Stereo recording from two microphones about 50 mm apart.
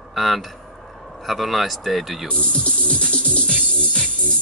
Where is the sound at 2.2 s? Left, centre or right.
Centre.